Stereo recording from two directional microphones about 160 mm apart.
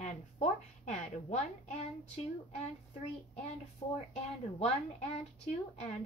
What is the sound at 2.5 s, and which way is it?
Child singing, 45° left (ahead or behind).